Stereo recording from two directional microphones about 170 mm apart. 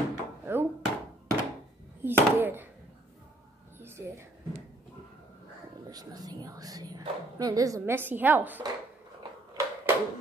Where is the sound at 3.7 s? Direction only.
15° right (ahead or behind).